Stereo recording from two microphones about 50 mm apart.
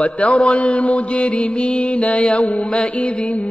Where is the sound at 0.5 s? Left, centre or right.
Left.